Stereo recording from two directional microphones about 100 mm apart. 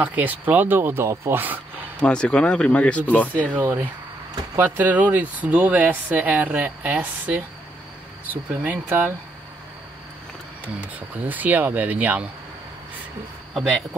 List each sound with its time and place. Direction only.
0.0 s speech: 15° right (ahead or behind)
2.0 s speech: 10° left (ahead or behind)
3.5 s speech: 20° right (ahead or behind)
11.0 s speech: 15° right (ahead or behind)